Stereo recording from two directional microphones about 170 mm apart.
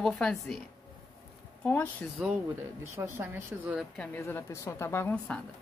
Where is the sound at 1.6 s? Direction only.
10° left (ahead or behind).